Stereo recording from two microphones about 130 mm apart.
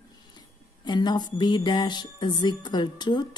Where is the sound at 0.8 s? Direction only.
35° left (ahead or behind).